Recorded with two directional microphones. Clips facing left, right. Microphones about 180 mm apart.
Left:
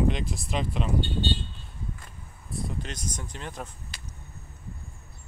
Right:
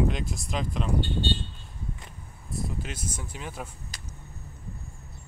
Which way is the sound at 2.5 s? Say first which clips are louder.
Even; 5° right (ahead or behind).